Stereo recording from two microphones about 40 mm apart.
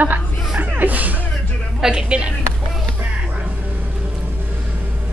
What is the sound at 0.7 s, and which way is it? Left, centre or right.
Music, right.